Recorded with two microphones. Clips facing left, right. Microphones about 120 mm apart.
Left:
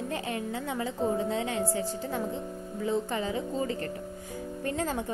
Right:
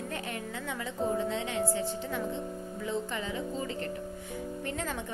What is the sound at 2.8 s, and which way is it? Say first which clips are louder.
Speech: left 5 dB; 35° left (ahead or behind).